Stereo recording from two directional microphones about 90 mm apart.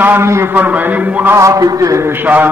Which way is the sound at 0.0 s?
25° right (ahead or behind).